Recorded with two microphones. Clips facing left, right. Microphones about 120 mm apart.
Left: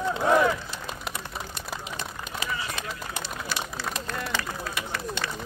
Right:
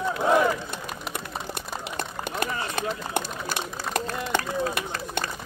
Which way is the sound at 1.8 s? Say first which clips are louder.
Right 4 dB; 65° right (ahead or behind).